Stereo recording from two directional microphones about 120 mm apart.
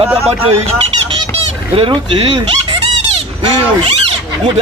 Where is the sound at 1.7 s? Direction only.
45° right (ahead or behind).